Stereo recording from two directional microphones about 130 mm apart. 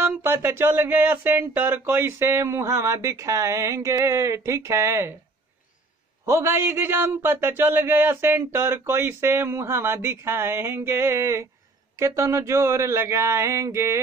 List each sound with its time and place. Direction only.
0.0 s a man's voice: 20° right (ahead or behind)
6.2 s a man's voice: 20° right (ahead or behind)